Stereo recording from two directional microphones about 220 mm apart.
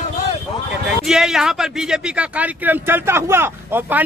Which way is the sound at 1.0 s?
Centre (ahead or behind).